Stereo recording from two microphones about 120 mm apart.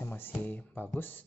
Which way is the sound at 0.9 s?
15° left (ahead or behind).